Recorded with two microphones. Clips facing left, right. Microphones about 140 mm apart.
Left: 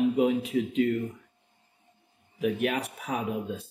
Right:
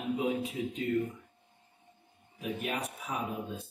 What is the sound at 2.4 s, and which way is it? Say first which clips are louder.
Speech: left 8 dB; 70° left (ahead or behind).